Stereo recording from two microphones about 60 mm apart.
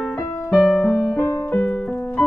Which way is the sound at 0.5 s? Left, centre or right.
Centre.